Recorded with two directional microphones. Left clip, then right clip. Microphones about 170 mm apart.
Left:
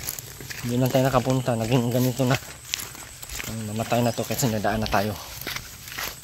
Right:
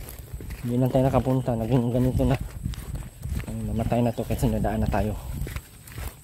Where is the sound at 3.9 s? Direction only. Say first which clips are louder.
Left 2 dB; 30° right (ahead or behind).